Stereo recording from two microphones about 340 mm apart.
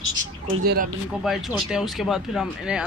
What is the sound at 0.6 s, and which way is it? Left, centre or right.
Speech, right.